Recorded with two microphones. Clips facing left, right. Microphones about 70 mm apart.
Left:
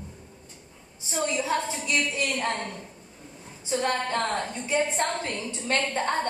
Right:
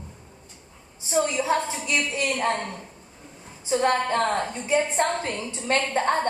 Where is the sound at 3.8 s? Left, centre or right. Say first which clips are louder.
Right 5 dB; right.